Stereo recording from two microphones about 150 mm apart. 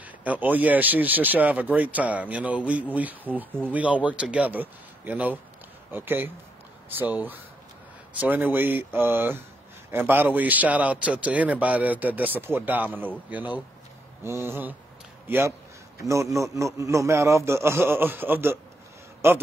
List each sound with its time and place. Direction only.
0.0 s a man's voice: 10° right (ahead or behind)